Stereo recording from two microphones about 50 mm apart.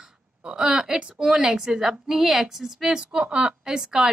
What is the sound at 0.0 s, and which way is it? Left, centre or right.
A woman's voice, centre.